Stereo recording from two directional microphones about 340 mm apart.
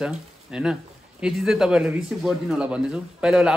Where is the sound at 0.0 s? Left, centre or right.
Centre.